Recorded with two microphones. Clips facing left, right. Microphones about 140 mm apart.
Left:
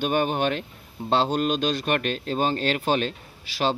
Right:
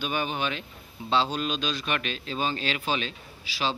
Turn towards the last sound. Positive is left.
turn(degrees=50)  # may be behind; listen again after turning